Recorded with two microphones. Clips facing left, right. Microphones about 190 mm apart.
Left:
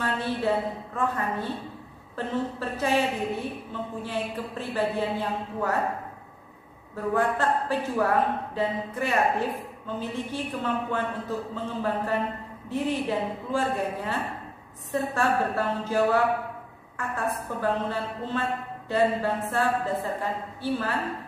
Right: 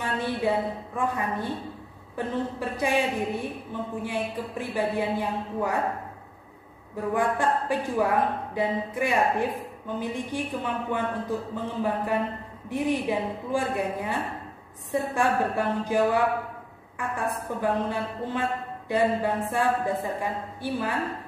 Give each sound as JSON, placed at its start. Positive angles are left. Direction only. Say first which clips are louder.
{"t": 0.0, "sound": "a man's voice", "louder": "even", "side_deg": -10}
{"t": 7.2, "sound": "a man's voice", "louder": "even", "side_deg": -15}